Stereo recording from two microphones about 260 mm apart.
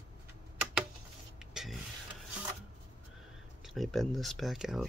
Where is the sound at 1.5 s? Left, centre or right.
Centre.